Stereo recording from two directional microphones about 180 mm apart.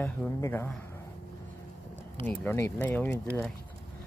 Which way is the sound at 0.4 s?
15° left (ahead or behind).